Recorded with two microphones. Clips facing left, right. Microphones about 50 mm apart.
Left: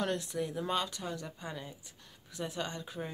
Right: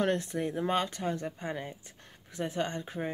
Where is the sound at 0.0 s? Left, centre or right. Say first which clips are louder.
Right 4 dB; right.